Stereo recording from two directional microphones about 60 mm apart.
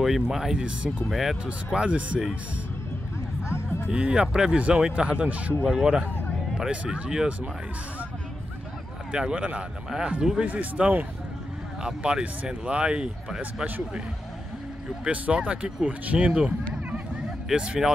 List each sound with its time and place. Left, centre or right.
0.0 s speech: centre
1.1 s speech: centre
1.4 s speech: centre
3.4 s music: left
3.9 s speech: centre
9.1 s speech: centre
11.8 s speech: centre
15.0 s speech: right
16.7 s a sound: centre